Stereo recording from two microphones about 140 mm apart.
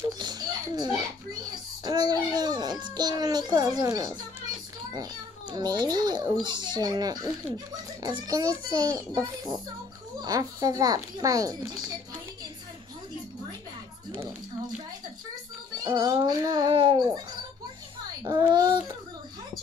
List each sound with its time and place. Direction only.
0.2 s a sound: 30° right (ahead or behind)
5.5 s a child's voice: 30° right (ahead or behind)
15.8 s a child's voice: 30° right (ahead or behind)
18.2 s a child's voice: 30° right (ahead or behind)